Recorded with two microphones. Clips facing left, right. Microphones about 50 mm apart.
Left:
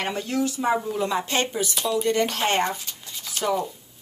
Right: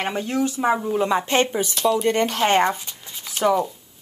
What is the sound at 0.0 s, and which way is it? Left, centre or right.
A woman's voice, right.